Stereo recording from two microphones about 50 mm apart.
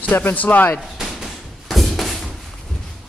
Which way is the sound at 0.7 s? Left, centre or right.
Centre.